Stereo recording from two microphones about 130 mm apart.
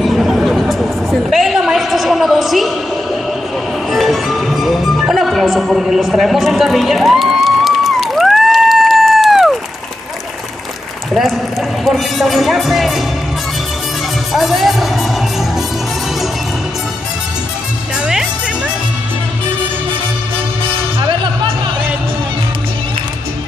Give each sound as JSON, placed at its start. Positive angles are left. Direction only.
{"t": 0.0, "sound": "a sound", "side_deg": 0}
{"t": 3.9, "sound": "music", "side_deg": 0}
{"t": 11.8, "sound": "speech", "side_deg": 0}
{"t": 14.3, "sound": "music", "side_deg": 0}
{"t": 21.0, "sound": "music", "side_deg": -40}